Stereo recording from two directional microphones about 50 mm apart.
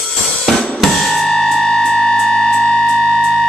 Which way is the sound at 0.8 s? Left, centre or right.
Centre.